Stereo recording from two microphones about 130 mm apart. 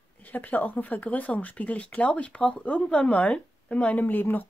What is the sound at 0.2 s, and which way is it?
Speech, 15° left (ahead or behind).